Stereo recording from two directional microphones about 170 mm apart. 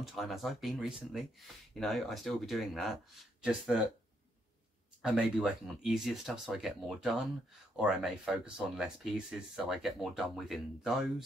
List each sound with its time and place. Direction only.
0.0 s speech: centre (ahead or behind)
5.0 s speech: 5° right (ahead or behind)